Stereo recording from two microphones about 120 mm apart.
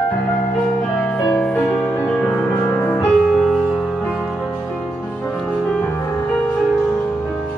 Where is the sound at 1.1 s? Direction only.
5° left (ahead or behind).